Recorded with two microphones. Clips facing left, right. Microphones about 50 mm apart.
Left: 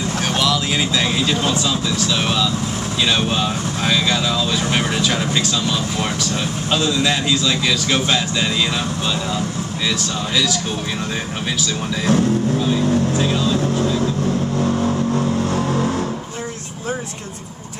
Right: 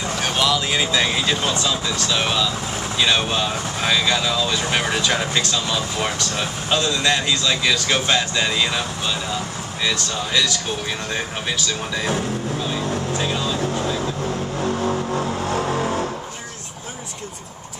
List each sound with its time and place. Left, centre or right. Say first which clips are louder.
0.4 s speech: even; centre
9.8 s speech: even; centre
12.1 s music: left 11 dB; centre
14.6 s vehicle: left 2 dB; centre
14.9 s vehicle: left 3 dB; centre